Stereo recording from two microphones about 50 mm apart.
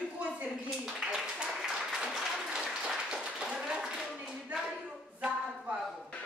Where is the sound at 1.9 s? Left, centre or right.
Centre.